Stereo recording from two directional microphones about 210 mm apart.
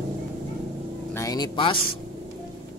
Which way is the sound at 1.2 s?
20° left (ahead or behind).